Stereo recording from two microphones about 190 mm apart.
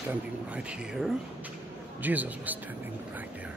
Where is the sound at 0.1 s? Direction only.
5° right (ahead or behind).